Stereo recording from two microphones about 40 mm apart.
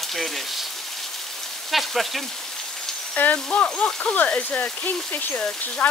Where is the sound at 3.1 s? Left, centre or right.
Left.